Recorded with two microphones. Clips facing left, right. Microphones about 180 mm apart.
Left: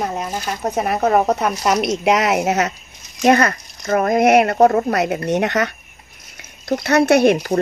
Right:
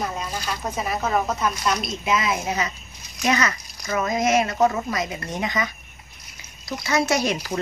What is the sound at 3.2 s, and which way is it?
Speech, 55° left (ahead or behind).